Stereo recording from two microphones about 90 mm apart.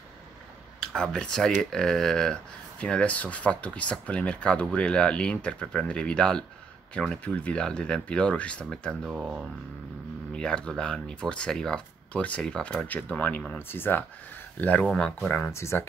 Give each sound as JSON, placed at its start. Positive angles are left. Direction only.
{"t": 0.7, "sound": "speech", "side_deg": 10}
{"t": 9.0, "sound": "speech", "side_deg": -5}
{"t": 10.3, "sound": "speech", "side_deg": 10}
{"t": 15.1, "sound": "speech", "side_deg": 20}